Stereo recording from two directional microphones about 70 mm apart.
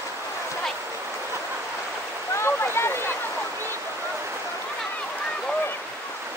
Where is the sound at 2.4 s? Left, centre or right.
Left.